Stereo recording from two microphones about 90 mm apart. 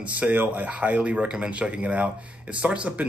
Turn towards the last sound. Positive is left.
turn(degrees=-15)  # may be behind; listen again after turning